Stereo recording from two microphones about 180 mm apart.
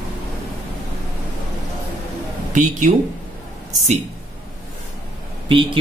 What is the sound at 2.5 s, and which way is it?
Speech, 45° right (ahead or behind).